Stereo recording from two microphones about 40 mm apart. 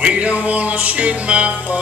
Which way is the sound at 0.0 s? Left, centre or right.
Right.